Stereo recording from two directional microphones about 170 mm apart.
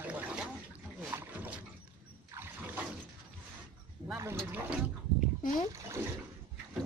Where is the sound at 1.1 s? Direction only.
15° right (ahead or behind).